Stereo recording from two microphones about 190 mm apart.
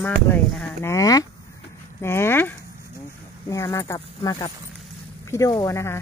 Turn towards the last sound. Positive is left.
turn(degrees=15)  # may be behind; listen again after turning